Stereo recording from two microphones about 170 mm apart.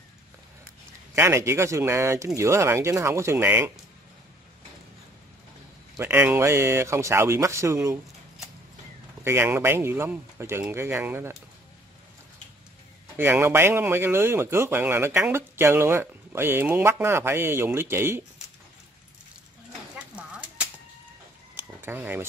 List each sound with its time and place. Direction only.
1.1 s speech: 15° right (ahead or behind)
5.9 s speech: 10° right (ahead or behind)
9.2 s speech: 15° right (ahead or behind)
13.2 s speech: 15° right (ahead or behind)
20.0 s a sound: 5° right (ahead or behind)